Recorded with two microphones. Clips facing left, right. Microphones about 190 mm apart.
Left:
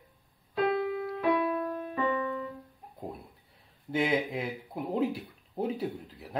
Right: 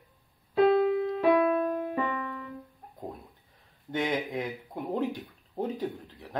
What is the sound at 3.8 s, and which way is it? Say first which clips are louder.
Speech: left 2 dB; 5° left (ahead or behind).